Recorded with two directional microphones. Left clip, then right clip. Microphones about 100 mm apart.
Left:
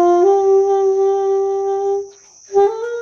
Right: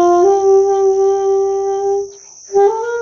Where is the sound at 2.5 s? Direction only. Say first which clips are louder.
Right 2 dB; 30° left (ahead or behind).